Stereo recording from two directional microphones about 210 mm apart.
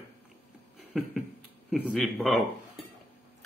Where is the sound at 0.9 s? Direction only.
Centre (ahead or behind).